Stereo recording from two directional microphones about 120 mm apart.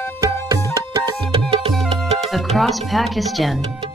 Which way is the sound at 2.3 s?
Centre (ahead or behind).